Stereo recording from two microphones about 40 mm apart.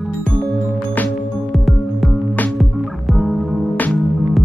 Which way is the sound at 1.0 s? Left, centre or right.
Left.